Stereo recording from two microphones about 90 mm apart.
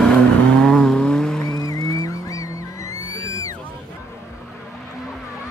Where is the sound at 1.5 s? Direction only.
45° left (ahead or behind).